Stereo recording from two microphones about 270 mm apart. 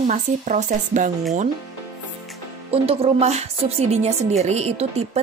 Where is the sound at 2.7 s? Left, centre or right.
Right.